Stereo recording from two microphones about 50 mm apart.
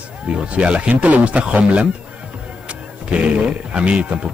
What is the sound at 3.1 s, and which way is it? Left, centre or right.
Speech, right.